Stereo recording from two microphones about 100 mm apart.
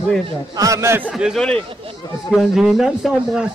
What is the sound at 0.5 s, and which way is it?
Speech, 35° right (ahead or behind).